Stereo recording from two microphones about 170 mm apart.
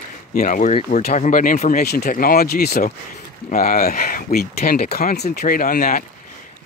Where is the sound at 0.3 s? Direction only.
50° left (ahead or behind).